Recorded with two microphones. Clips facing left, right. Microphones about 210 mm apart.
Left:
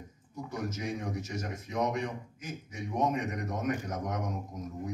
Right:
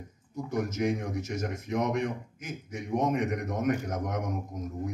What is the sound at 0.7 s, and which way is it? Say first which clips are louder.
A man's voice: right 6 dB; 50° right (ahead or behind).